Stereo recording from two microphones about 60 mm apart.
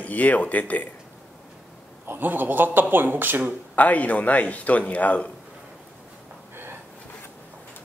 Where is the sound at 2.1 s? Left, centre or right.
Right.